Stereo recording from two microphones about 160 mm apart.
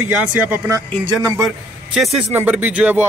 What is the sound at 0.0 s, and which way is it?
Speech, 10° right (ahead or behind).